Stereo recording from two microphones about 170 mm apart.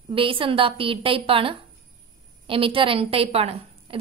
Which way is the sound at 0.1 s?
30° right (ahead or behind).